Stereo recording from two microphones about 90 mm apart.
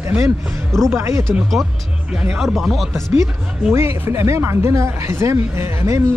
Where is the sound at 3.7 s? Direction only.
30° right (ahead or behind).